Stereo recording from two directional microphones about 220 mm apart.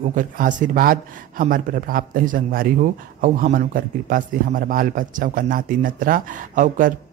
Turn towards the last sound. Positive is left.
turn(degrees=-35)  # may be behind; listen again after turning